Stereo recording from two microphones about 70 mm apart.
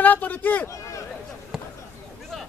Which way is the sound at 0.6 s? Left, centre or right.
Left.